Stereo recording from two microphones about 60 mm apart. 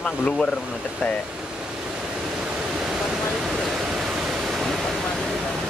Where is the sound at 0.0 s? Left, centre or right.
Centre.